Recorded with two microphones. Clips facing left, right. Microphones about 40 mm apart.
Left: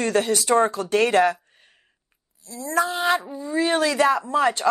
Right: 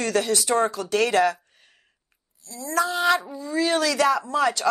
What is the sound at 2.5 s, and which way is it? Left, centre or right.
Speech, left.